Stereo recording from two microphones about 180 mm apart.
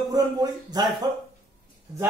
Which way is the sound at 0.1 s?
20° right (ahead or behind).